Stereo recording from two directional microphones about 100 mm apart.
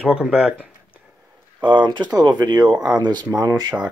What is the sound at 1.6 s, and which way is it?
Speech, 50° right (ahead or behind).